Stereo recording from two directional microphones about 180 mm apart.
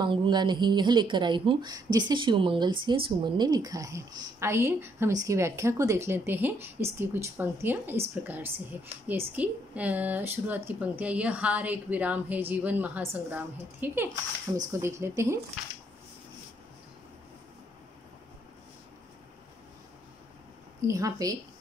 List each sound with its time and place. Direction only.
0.0 s speech: 25° right (ahead or behind)
20.8 s speech: 20° right (ahead or behind)